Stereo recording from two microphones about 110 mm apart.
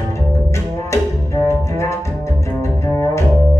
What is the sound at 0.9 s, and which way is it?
Music, 25° left (ahead or behind).